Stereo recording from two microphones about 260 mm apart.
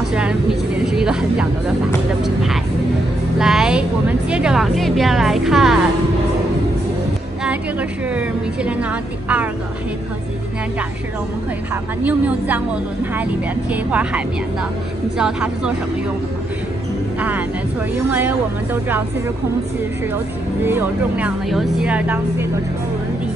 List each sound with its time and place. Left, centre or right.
0.1 s speech: centre
3.3 s music: centre
4.3 s speech: centre
8.1 s speech: centre
11.7 s a woman's voice: centre
18.1 s a woman's voice: centre
20.6 s speech: centre